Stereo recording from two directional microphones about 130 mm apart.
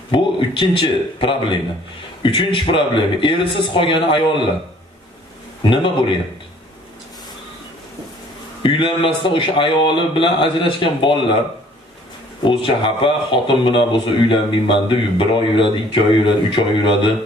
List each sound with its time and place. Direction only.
0.1 s a man's voice: 40° left (ahead or behind)
5.6 s a man's voice: 35° left (ahead or behind)
8.6 s a man's voice: 40° left (ahead or behind)
12.4 s a man's voice: 40° left (ahead or behind)